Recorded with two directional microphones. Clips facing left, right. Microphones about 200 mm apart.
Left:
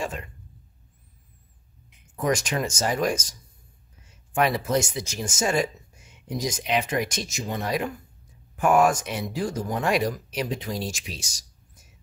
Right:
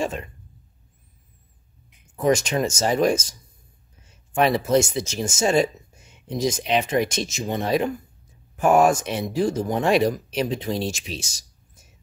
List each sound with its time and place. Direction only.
0.0 s speech: 25° right (ahead or behind)
2.2 s speech: 25° right (ahead or behind)
4.4 s speech: 25° right (ahead or behind)